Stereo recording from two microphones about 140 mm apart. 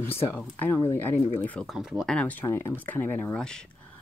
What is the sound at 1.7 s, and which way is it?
Speech, 5° right (ahead or behind).